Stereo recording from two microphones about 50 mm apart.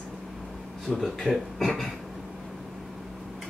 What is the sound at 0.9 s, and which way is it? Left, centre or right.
A man's voice, centre.